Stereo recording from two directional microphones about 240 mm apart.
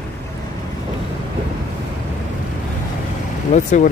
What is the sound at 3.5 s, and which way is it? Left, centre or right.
Speech, left.